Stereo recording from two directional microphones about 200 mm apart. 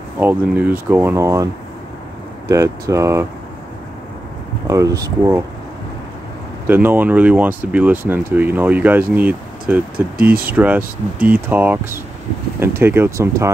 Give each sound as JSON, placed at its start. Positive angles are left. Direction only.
{"t": 0.2, "sound": "speech", "side_deg": -10}
{"t": 2.5, "sound": "speech", "side_deg": -15}
{"t": 4.6, "sound": "speech", "side_deg": -15}
{"t": 6.7, "sound": "speech", "side_deg": -10}